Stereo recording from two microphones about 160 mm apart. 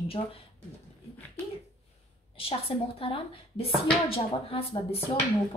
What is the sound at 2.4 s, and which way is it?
Speech, 35° left (ahead or behind).